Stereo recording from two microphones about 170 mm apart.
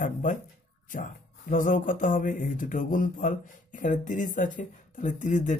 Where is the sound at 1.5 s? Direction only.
50° left (ahead or behind).